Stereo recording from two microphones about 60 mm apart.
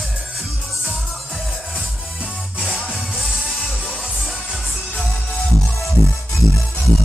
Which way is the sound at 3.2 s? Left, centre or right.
Centre.